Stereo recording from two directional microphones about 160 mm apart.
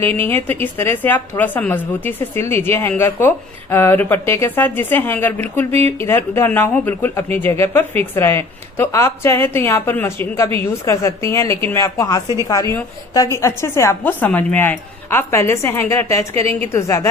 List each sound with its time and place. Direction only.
0.0 s a woman's voice: 15° left (ahead or behind)